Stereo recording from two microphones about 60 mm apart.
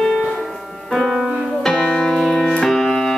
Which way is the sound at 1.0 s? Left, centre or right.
Centre.